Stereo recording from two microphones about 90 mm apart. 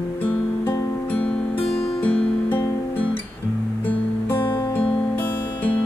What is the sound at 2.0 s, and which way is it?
Music, 15° left (ahead or behind).